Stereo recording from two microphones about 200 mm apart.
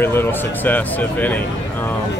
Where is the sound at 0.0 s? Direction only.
10° left (ahead or behind).